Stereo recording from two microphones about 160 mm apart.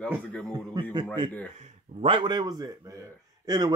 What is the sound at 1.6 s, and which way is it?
A man's voice, 40° right (ahead or behind).